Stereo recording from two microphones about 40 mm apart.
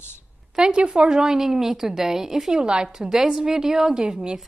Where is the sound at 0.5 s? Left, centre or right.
Right.